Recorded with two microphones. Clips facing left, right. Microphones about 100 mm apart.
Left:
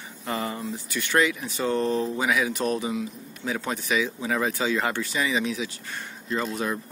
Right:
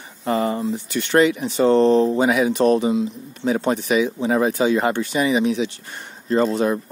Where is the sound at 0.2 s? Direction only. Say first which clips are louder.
Right 9 dB; 30° right (ahead or behind).